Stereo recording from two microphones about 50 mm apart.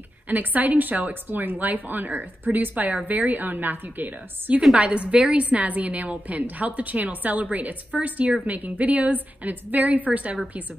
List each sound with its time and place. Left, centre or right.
0.3 s a woman's voice: right
4.7 s a woman's voice: right